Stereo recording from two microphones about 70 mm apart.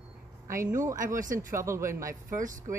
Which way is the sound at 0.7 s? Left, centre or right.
Right.